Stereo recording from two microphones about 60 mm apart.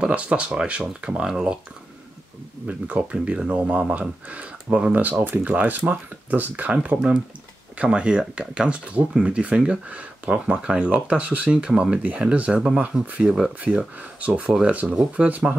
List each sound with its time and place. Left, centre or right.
0.0 s speech: centre
2.6 s speech: right
7.0 s speech: centre